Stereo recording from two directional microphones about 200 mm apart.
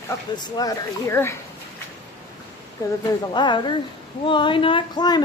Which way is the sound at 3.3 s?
20° left (ahead or behind).